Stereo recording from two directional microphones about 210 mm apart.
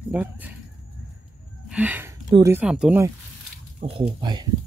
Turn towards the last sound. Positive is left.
turn(degrees=-20)  # may be behind; listen again after turning